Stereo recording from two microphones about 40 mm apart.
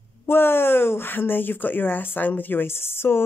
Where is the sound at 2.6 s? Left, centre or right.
Left.